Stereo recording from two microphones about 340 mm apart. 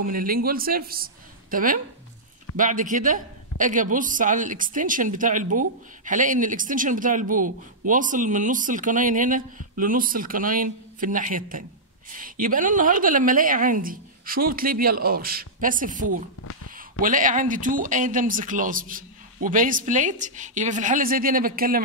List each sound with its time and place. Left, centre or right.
0.0 s a man's voice: right